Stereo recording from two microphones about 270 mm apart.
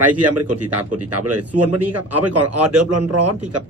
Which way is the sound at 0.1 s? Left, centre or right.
Right.